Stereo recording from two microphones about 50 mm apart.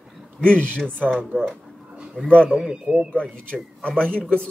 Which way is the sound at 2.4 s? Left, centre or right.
Centre.